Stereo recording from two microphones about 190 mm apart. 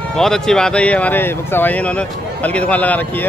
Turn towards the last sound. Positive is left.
turn(degrees=10)  # may be behind; listen again after turning